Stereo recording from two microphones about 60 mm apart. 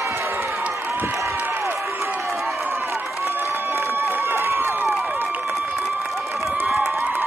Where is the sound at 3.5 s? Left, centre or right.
Right.